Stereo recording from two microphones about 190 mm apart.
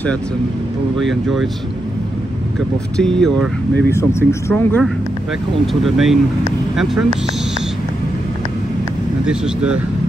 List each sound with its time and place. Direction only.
0.9 s speech: centre (ahead or behind)
3.0 s speech: 5° left (ahead or behind)
9.2 s speech: 5° right (ahead or behind)